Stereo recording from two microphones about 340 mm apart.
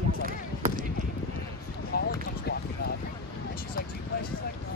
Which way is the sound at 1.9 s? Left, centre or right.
Left.